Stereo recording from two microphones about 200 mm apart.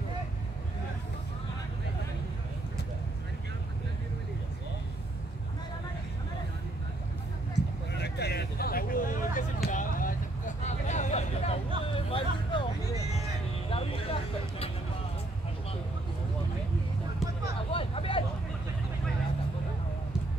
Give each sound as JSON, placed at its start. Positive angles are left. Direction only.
{"t": 7.5, "sound": "a sound", "side_deg": 55}
{"t": 11.8, "sound": "vehicle", "side_deg": 25}
{"t": 13.7, "sound": "vehicle", "side_deg": 30}
{"t": 17.6, "sound": "vehicle", "side_deg": 30}